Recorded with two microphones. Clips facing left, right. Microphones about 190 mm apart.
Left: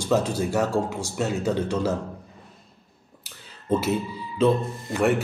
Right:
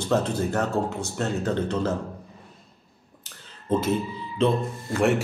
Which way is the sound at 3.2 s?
10° left (ahead or behind).